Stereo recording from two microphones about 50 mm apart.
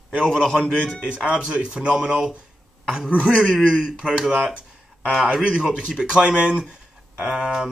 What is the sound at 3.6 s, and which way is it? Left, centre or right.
Speech, centre.